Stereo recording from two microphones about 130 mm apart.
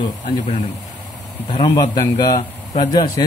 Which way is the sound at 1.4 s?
40° left (ahead or behind).